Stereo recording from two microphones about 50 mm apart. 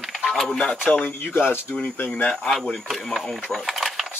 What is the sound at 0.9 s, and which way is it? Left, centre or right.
Speech, left.